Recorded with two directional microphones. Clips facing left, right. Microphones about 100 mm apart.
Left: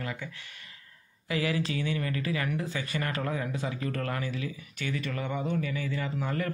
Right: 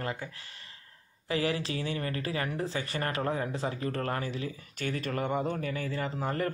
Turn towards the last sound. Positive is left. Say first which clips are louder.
# right 1 dB
turn(degrees=-35)  # may be behind; listen again after turning